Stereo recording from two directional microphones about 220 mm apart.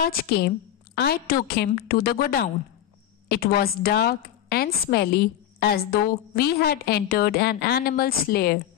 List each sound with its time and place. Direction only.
0.0 s a woman's voice: 45° left (ahead or behind)